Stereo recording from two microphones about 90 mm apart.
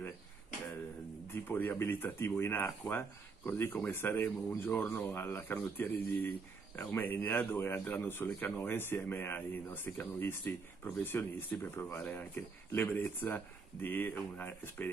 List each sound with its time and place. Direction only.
1.3 s speech: 20° left (ahead or behind)